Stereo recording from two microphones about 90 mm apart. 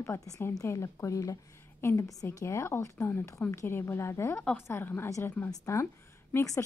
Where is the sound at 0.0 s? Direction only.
35° left (ahead or behind).